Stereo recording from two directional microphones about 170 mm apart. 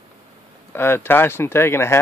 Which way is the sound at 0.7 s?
15° left (ahead or behind).